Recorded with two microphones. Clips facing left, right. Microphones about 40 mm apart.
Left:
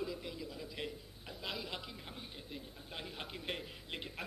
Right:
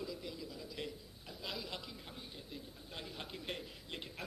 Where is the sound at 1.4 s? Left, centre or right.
Centre.